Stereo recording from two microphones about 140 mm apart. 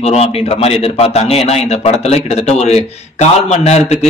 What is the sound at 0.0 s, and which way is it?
Speech, 45° left (ahead or behind).